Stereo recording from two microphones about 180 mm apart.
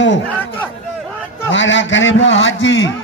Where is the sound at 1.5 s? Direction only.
90° left.